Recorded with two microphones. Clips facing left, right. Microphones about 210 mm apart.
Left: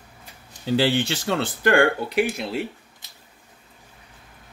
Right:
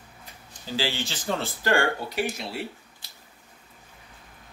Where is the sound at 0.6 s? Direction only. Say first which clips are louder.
Left 9 dB; 60° left (ahead or behind).